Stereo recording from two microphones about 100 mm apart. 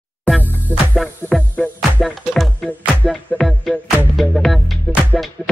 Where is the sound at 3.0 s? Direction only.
10° left (ahead or behind).